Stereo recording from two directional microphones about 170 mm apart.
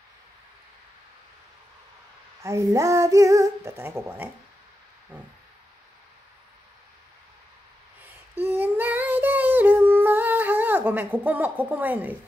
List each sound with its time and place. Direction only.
2.4 s female singing: 20° right (ahead or behind)
8.0 s female singing: 10° right (ahead or behind)